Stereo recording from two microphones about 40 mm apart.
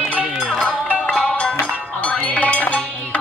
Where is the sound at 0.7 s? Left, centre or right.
Left.